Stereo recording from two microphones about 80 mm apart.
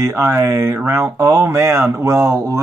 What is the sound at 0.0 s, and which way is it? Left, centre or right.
Speech, right.